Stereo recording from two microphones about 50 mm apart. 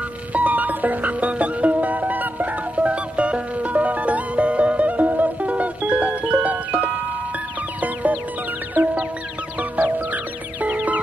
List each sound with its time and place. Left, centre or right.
0.3 s music: right
9.6 s music: right